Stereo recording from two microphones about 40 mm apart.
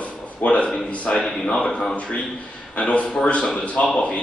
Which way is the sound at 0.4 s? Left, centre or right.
Left.